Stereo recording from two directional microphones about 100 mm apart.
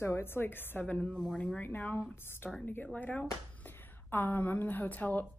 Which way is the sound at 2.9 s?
10° left (ahead or behind).